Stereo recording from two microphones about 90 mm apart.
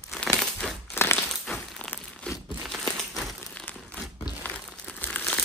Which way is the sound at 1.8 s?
15° left (ahead or behind).